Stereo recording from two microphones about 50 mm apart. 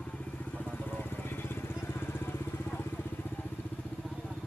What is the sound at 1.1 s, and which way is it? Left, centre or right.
Vehicle, left.